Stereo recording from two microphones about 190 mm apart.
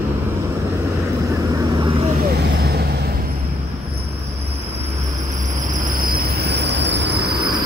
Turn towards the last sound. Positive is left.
turn(degrees=-55)  # may be behind; listen again after turning